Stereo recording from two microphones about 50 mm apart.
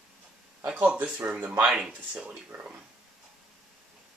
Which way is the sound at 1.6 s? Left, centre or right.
Centre.